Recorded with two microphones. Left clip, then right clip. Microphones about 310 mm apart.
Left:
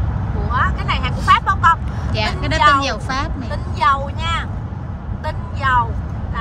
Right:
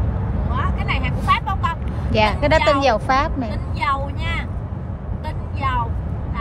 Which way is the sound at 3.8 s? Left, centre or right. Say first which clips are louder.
Left 6 dB; centre.